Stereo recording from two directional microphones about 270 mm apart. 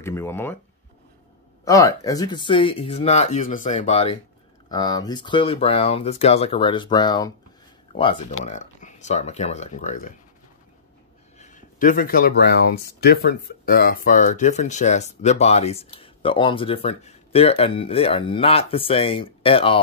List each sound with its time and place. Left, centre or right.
0.0 s speech: centre
1.6 s speech: centre; by 10.1 s left
11.3 s speech: left